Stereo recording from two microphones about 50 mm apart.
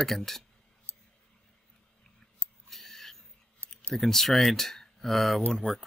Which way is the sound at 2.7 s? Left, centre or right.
Centre.